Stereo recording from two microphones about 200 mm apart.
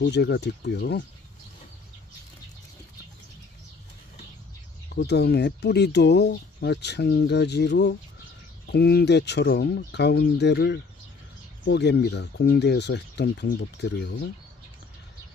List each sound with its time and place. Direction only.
0.0 s speech: 55° left (ahead or behind)
4.9 s speech: 55° left (ahead or behind)